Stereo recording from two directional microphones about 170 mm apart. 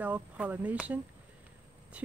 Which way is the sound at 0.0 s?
10° right (ahead or behind).